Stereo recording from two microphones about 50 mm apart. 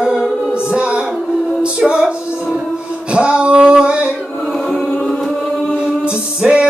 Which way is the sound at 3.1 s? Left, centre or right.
Right.